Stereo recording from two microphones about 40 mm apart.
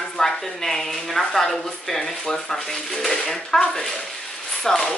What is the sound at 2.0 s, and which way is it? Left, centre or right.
Speech, centre.